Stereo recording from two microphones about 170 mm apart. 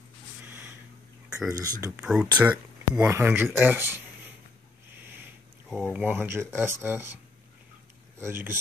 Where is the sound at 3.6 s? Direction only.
10° right (ahead or behind).